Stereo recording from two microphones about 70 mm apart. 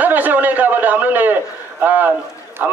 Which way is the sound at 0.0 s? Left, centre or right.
Right.